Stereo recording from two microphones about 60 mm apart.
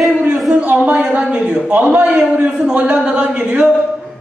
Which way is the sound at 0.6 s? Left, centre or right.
Right.